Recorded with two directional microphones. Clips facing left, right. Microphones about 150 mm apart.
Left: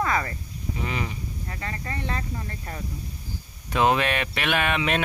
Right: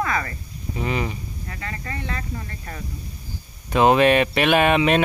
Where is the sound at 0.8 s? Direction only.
30° right (ahead or behind).